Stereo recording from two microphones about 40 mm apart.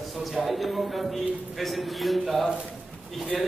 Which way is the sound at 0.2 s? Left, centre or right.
Centre.